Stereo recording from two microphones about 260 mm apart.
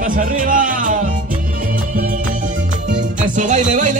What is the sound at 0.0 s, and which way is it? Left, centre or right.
Speech, right.